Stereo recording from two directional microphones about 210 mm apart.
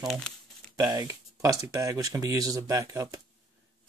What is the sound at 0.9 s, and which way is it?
Speech, 15° right (ahead or behind).